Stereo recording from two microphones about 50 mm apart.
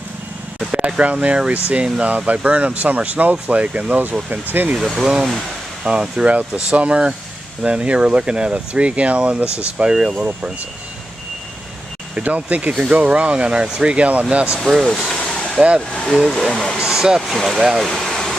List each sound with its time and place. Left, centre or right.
0.7 s speech: right
4.7 s speech: centre
5.0 s speech: centre
5.9 s speech: centre
12.2 s speech: right
14.9 s vehicle: centre
15.9 s speech: centre
16.7 s a sound: centre
17.3 s speech: centre
17.8 s vehicle: centre